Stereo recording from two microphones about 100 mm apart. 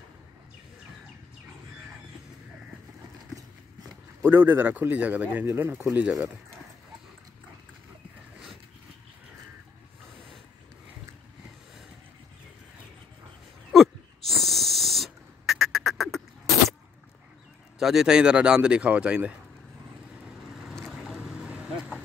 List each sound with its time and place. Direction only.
4.2 s a man's voice: 20° right (ahead or behind)
13.7 s wheeze: centre (ahead or behind)
17.7 s speech: 5° right (ahead or behind)
21.0 s boat: 5° right (ahead or behind)